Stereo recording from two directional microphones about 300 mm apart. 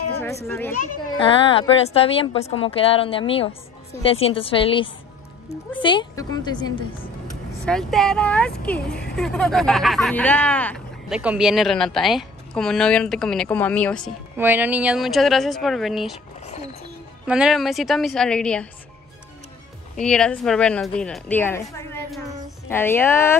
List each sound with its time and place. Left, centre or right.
0.2 s a woman's voice: centre
7.6 s speech: centre
17.3 s speech: centre
20.0 s a woman's voice: centre